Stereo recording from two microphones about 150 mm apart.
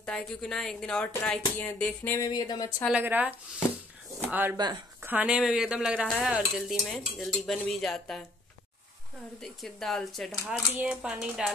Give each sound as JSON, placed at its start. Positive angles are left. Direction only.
{"t": 0.0, "sound": "speech", "side_deg": 5}
{"t": 2.2, "sound": "speech", "side_deg": 25}
{"t": 2.9, "sound": "speech", "side_deg": -10}
{"t": 4.6, "sound": "speech", "side_deg": -30}
{"t": 5.0, "sound": "speech", "side_deg": -10}
{"t": 9.4, "sound": "speech", "side_deg": 0}